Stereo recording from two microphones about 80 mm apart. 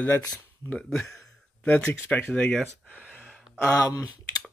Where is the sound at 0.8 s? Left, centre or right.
Centre.